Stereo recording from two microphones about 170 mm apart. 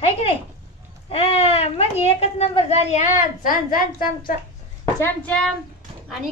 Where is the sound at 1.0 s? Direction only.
35° left (ahead or behind); by 4.1 s 55° left (ahead or behind).